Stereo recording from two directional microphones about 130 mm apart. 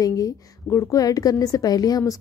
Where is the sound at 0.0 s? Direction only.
25° left (ahead or behind).